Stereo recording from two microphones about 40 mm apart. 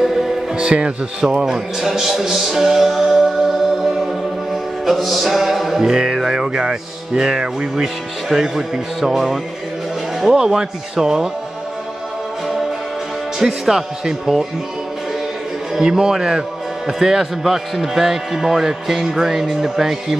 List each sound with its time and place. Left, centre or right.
0.0 s music: centre
0.6 s speech: right
1.3 s music: centre
13.4 s music: centre
15.8 s music: centre